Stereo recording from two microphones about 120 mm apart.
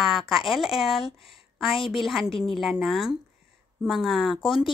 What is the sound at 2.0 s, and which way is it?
Speech, centre (ahead or behind).